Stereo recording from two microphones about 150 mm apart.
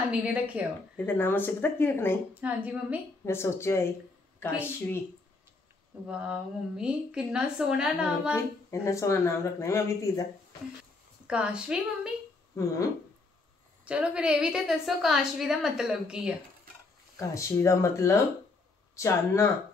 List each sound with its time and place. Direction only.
0.1 s a woman's voice: 10° right (ahead or behind)
0.9 s speech: 15° left (ahead or behind)
2.3 s a woman's voice: 10° right (ahead or behind)
3.3 s speech: 15° left (ahead or behind)
6.0 s a woman's voice: 5° right (ahead or behind)
8.6 s speech: 20° left (ahead or behind)
11.2 s a woman's voice: 5° right (ahead or behind)
12.6 s speech: 20° left (ahead or behind)
13.8 s a woman's voice: 10° right (ahead or behind)
17.2 s speech: 20° left (ahead or behind)